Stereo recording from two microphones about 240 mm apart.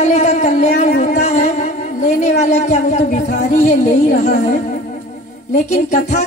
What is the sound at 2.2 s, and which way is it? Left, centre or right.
Speech, left.